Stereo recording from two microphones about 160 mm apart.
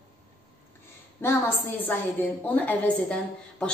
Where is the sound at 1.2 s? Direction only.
15° left (ahead or behind).